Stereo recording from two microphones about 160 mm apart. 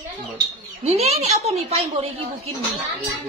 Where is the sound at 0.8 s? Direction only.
40° right (ahead or behind).